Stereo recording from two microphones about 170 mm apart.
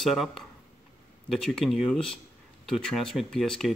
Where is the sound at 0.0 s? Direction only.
Centre (ahead or behind).